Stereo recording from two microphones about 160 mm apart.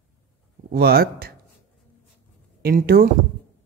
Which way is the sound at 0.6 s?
70° right (ahead or behind).